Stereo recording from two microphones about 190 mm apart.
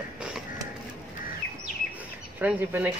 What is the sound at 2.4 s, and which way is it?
Speech, 5° right (ahead or behind).